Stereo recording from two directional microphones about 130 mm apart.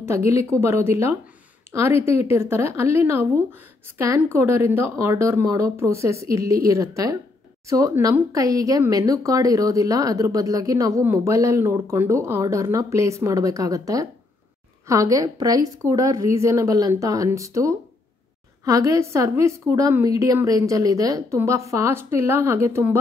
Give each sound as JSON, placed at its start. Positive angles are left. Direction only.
{"t": 0.0, "sound": "a woman's voice", "side_deg": -20}